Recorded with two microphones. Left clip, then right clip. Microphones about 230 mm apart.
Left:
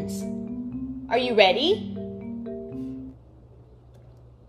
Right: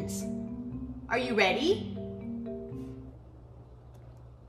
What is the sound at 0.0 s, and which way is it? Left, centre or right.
Music, centre.